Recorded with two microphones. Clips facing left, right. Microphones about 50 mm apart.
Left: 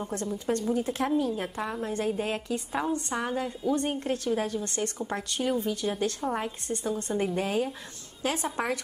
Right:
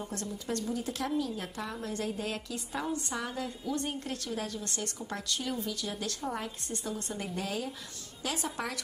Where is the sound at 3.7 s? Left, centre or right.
Left.